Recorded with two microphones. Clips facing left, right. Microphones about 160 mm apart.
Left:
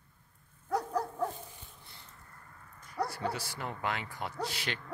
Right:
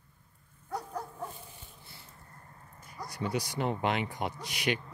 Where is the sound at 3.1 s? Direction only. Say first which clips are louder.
Right 2 dB; 15° right (ahead or behind).